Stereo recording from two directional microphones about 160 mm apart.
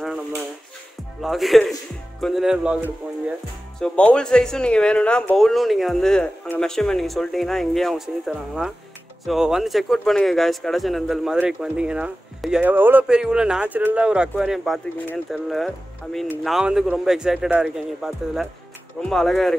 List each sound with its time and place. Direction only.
0.0 s a sound: centre (ahead or behind)
1.2 s speech: centre (ahead or behind)
3.8 s speech: 10° left (ahead or behind)